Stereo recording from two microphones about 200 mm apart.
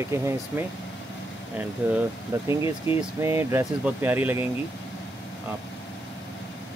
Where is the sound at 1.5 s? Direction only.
10° right (ahead or behind).